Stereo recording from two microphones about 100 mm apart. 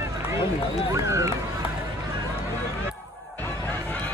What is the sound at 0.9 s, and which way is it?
Speech, 30° right (ahead or behind).